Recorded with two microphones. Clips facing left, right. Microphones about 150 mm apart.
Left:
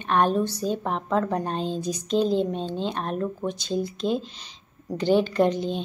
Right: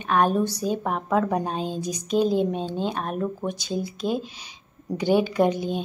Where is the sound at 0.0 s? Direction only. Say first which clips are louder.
Right 1 dB; 5° right (ahead or behind).